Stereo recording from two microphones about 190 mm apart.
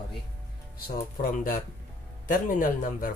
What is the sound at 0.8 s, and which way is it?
Speech, 50° left (ahead or behind).